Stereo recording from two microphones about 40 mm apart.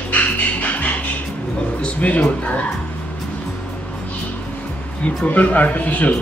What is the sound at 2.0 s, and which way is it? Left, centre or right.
Speech, left.